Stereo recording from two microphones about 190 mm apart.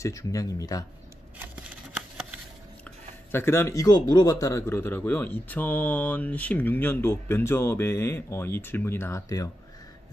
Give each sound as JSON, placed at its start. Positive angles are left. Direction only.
{"t": 0.0, "sound": "speech", "side_deg": 15}
{"t": 2.8, "sound": "speech", "side_deg": 10}